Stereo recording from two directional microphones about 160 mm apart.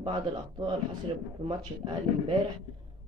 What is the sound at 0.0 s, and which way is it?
Speech, 30° right (ahead or behind).